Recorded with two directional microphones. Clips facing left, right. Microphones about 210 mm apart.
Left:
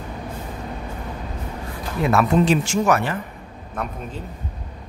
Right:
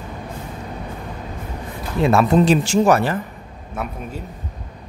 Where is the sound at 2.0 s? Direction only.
25° right (ahead or behind).